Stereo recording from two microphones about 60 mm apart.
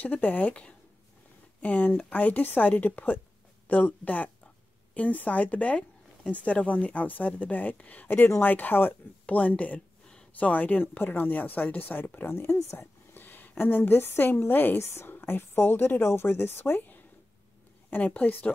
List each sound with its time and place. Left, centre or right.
0.0 s a woman's voice: left